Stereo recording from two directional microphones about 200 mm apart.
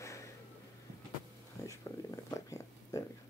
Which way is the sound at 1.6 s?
15° left (ahead or behind).